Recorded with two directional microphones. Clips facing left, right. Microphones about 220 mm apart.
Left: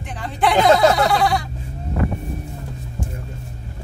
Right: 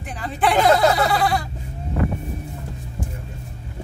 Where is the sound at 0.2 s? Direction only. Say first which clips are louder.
Left 1 dB; centre (ahead or behind).